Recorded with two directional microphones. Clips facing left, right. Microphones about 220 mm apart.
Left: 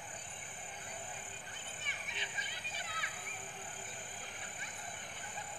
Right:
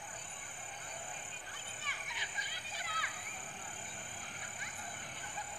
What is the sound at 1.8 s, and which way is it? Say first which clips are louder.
Insect: left 2 dB; 25° left (ahead or behind).